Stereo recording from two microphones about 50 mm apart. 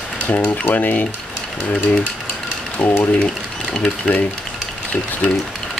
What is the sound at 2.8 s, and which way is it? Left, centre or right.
Speech, left.